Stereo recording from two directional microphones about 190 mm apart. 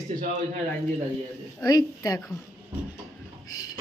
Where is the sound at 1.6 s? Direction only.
20° left (ahead or behind).